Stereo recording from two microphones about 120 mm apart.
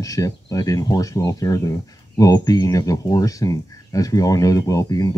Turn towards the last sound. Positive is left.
turn(degrees=30)  # may be behind; listen again after turning